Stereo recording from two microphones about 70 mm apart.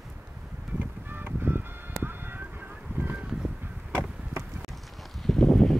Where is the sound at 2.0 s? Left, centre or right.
Right.